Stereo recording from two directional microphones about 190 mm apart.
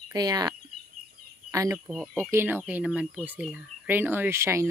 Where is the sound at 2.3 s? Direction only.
10° right (ahead or behind).